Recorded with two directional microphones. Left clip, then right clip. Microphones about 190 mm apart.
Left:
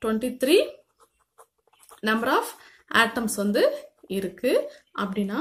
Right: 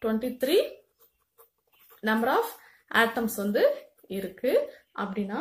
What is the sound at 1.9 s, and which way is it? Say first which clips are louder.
Speech: left 2 dB; 40° left (ahead or behind).